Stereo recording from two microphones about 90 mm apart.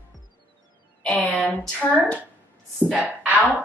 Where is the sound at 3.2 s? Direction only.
15° right (ahead or behind).